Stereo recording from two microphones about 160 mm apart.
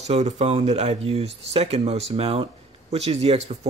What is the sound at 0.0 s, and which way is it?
Speech, 45° right (ahead or behind).